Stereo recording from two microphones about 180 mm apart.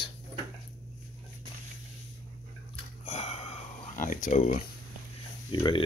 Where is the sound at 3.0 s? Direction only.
35° left (ahead or behind).